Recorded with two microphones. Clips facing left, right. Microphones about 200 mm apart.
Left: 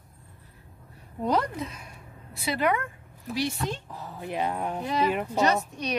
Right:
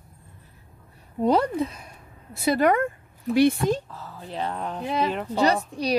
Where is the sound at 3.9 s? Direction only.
15° left (ahead or behind).